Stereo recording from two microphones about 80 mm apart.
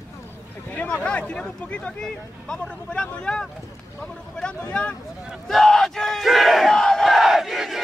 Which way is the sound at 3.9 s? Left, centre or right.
Centre.